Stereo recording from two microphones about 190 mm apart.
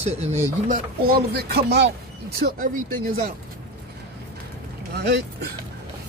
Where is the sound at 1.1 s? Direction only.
55° right (ahead or behind).